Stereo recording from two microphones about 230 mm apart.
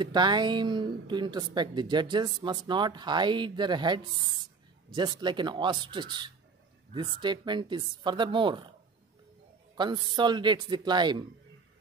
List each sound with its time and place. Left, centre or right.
0.0 s a woman's voice: centre
9.8 s a woman's voice: centre